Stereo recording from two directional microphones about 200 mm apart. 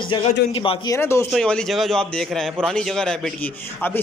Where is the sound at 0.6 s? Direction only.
25° left (ahead or behind).